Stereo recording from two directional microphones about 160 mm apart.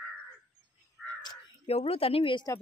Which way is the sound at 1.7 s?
40° left (ahead or behind).